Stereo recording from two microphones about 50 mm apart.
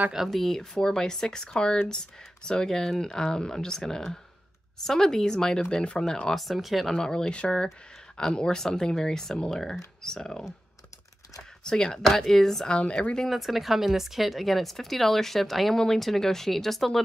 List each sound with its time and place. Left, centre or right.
0.3 s speech: centre
6.4 s speech: centre
7.0 s speech: centre
11.6 s speech: centre
12.6 s speech: left
13.2 s speech: centre